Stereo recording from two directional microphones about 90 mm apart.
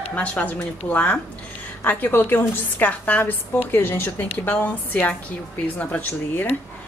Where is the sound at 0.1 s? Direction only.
15° left (ahead or behind).